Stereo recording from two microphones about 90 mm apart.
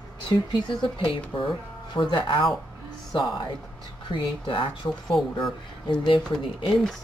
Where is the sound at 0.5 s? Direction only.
75° left (ahead or behind).